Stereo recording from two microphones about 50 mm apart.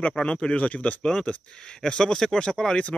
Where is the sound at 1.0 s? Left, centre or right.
Centre.